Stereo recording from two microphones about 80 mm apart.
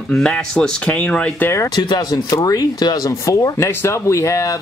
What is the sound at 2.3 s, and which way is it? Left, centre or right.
Speech, left.